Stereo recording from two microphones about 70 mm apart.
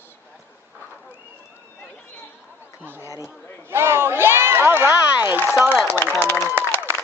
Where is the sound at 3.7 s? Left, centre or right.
Right.